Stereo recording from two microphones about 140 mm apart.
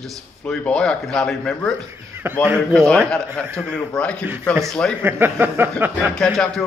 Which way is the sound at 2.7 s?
5° left (ahead or behind).